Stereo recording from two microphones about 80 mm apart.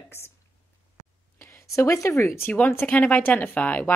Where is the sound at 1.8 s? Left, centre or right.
Left.